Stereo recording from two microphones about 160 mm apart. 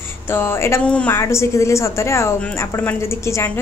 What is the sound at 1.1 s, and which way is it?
A woman's voice, 15° left (ahead or behind).